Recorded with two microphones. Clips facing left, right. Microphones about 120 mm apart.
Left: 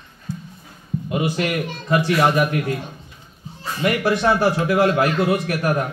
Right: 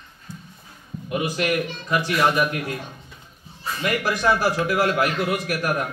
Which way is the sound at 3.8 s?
30° left (ahead or behind).